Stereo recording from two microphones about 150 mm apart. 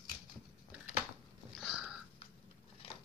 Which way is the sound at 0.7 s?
10° right (ahead or behind).